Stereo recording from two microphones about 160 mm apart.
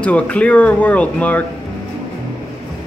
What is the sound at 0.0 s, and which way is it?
Speech, 5° left (ahead or behind).